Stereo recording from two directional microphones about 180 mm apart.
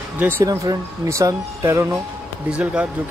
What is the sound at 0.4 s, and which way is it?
Speech, 20° right (ahead or behind).